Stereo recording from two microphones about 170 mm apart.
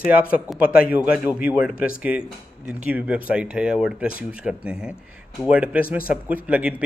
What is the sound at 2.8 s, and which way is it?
Speech, 10° right (ahead or behind).